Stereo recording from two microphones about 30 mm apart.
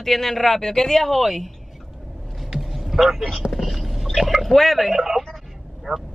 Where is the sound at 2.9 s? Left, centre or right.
Centre.